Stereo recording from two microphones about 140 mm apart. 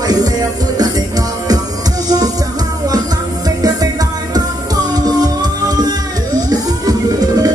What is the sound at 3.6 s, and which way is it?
Music, 25° right (ahead or behind).